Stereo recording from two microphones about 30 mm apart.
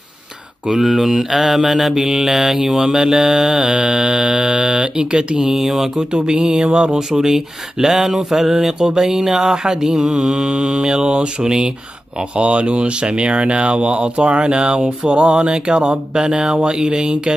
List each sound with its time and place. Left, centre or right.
0.7 s speech: centre
2.2 s mantra: centre; by 5.0 s right
5.6 s speech: centre
6.1 s speech: right
6.4 s speech: centre
9.8 s speech: centre
11.4 s speech: right
12.4 s speech: right
15.0 s mantra: right
15.3 s speech: right